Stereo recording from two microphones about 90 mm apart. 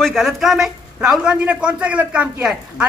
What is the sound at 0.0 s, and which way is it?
A man's voice, centre (ahead or behind).